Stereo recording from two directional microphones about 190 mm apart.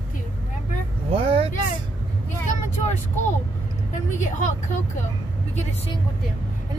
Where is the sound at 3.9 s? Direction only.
40° left (ahead or behind).